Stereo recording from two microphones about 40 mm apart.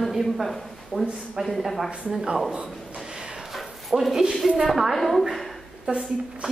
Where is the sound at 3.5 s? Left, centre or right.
Centre.